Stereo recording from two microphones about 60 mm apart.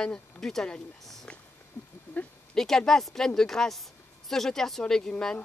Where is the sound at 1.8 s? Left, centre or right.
Centre.